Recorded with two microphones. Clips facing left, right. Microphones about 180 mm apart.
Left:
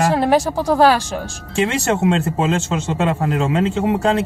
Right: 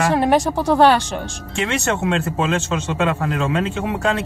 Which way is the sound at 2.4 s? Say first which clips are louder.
Left 2 dB; 20° left (ahead or behind).